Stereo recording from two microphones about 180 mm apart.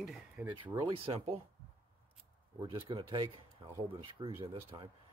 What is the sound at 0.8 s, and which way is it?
Speech, 30° right (ahead or behind).